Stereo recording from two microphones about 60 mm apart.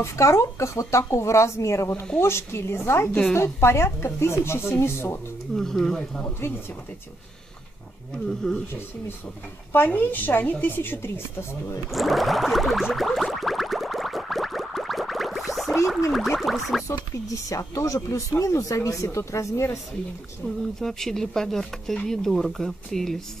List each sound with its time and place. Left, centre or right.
0.0 s speech: left
5.6 s speech: centre
8.3 s speech: centre
9.7 s a woman's voice: left
11.9 s a sound: centre
16.8 s speech: left
20.8 s speech: centre